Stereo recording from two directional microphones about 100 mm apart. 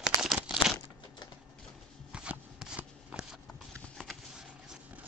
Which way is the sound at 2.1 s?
10° right (ahead or behind).